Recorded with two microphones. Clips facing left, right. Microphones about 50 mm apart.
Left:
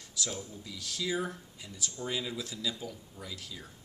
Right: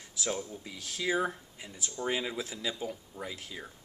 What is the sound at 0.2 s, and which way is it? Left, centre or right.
Speech, right.